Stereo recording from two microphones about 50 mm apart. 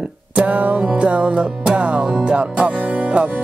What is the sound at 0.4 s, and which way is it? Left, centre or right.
Music, right.